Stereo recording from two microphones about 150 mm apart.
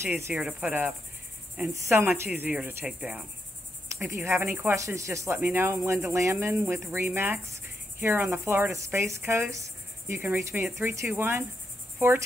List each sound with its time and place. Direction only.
0.0 s cricket: 15° right (ahead or behind)
4.4 s speech: 15° right (ahead or behind)
5.4 s cricket: 15° right (ahead or behind)